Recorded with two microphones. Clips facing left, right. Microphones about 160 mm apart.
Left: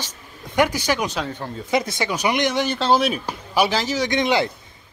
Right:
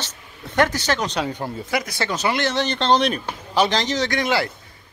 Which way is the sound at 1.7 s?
20° left (ahead or behind).